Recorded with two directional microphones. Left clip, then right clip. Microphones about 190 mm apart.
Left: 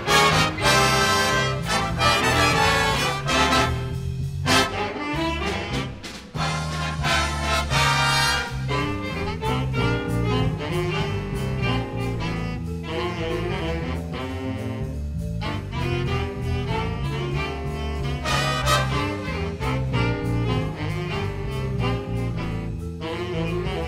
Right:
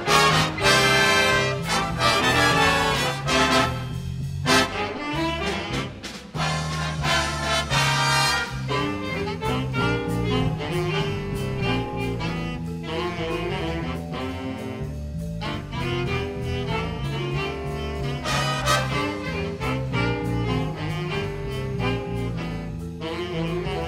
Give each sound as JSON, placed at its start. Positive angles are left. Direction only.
{"t": 0.0, "sound": "music", "side_deg": 0}
{"t": 12.9, "sound": "saxophone", "side_deg": 0}
{"t": 15.9, "sound": "music", "side_deg": 0}
{"t": 19.6, "sound": "music", "side_deg": 0}